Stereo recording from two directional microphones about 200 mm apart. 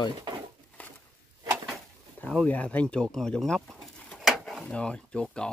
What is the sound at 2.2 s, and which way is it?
Speech, 5° left (ahead or behind).